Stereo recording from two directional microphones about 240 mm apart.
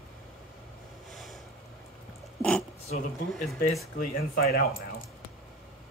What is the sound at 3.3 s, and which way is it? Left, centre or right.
Speech, centre.